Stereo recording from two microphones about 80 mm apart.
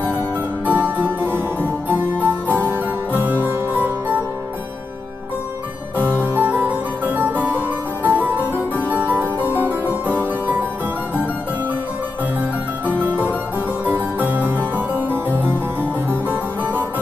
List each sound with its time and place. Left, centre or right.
0.7 s harpsichord: right
6.2 s harpsichord: right
13.0 s music: right
13.8 s harpsichord: right
14.8 s music: right